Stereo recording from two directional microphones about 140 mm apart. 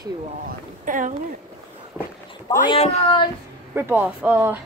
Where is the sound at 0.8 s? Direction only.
65° right (ahead or behind).